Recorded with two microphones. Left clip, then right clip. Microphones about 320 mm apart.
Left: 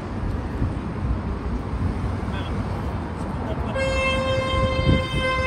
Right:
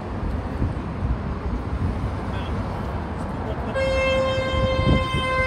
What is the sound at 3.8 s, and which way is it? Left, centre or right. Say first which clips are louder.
Vehicle: right 2 dB; right.